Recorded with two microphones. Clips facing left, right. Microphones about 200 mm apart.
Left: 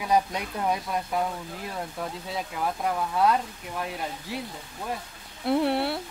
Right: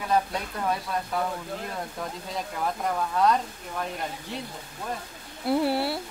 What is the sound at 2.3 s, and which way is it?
Speech, 5° left (ahead or behind).